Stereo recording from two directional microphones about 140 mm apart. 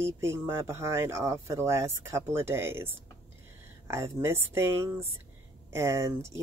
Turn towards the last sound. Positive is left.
turn(degrees=-20)  # may be behind; listen again after turning